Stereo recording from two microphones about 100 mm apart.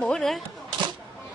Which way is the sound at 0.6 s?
50° right (ahead or behind).